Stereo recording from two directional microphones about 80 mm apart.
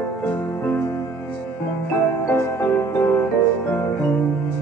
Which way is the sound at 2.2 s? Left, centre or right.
Left.